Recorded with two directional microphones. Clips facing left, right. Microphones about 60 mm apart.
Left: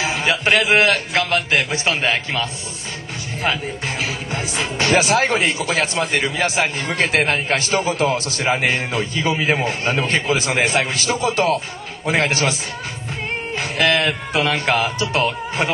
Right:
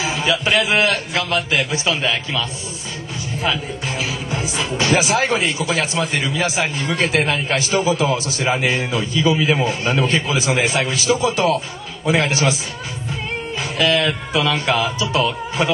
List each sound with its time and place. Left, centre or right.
0.0 s speech: left
4.6 s speech: left
13.6 s speech: left